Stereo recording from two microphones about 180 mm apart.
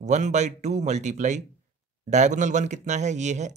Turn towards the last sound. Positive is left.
turn(degrees=-40)  # may be behind; listen again after turning